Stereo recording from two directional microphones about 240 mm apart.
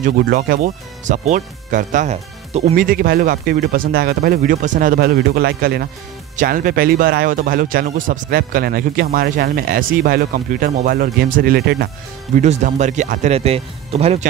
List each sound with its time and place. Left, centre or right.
0.0 s speech: right
12.4 s speech: right